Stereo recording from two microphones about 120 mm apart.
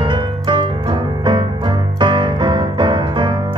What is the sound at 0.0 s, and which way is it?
Music, 40° right (ahead or behind).